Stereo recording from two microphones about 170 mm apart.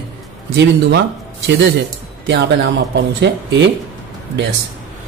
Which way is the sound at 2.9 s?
90° right.